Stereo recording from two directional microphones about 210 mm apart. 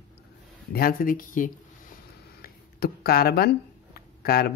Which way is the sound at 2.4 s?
45° left (ahead or behind).